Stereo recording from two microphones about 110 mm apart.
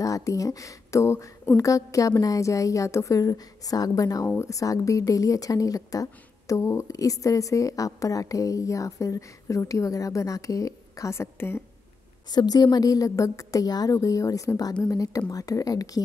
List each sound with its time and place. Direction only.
0.0 s speech: 30° left (ahead or behind)
12.3 s speech: 40° left (ahead or behind)